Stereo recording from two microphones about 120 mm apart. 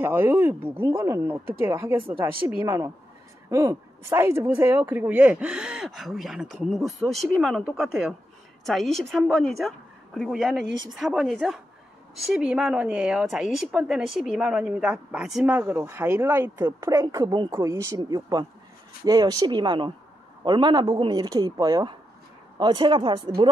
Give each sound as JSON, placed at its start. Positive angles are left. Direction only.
{"t": 0.0, "sound": "speech", "side_deg": -20}